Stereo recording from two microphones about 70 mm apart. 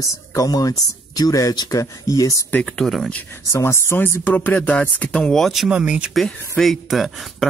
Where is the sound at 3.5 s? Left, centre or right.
Left.